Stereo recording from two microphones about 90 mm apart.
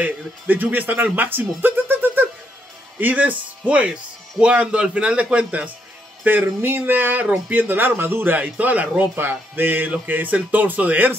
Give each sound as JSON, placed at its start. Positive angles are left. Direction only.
{"t": 0.0, "sound": "speech", "side_deg": -20}